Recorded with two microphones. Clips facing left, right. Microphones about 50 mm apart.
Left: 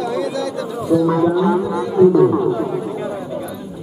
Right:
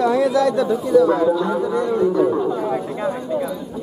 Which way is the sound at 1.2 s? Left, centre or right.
Centre.